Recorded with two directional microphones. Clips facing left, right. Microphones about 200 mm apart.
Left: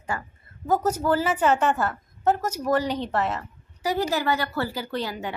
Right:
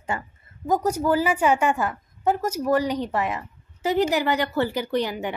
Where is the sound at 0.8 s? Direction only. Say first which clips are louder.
Right 3 dB; 10° right (ahead or behind).